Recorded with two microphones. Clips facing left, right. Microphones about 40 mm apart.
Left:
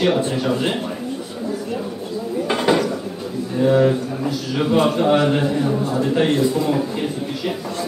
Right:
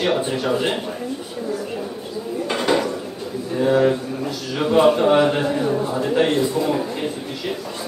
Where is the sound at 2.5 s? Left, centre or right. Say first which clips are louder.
Left 2 dB; centre.